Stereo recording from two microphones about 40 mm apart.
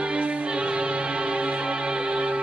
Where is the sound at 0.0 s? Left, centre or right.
Right.